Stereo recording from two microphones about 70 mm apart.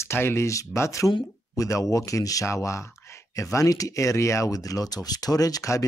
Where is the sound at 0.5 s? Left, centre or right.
Left.